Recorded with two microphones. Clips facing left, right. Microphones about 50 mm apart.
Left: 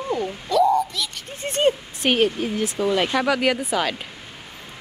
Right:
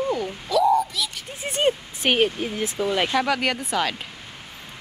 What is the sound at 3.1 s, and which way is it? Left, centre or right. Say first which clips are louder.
Speech: left 2 dB; centre.